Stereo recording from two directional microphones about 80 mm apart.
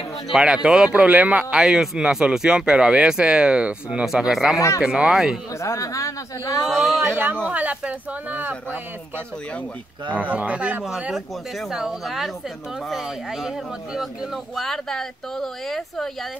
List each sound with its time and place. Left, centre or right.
0.3 s speech: centre
4.6 s speech: left
4.8 s speech: centre
5.6 s speech: left
6.6 s speech: centre
7.1 s speech: right
10.1 s speech: centre